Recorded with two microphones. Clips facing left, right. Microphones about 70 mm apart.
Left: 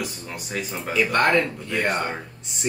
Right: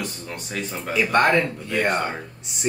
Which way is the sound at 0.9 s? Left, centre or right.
Centre.